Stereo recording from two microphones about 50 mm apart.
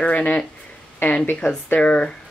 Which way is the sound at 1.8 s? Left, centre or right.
Left.